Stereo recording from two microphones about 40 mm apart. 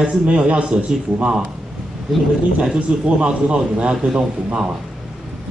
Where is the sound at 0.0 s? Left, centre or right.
Right.